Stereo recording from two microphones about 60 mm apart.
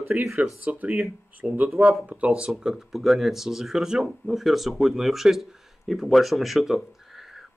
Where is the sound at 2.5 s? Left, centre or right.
Centre.